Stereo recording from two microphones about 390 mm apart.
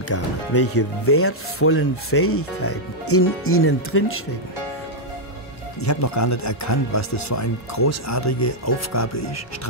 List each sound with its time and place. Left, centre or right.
0.1 s speech: left
5.9 s speech: left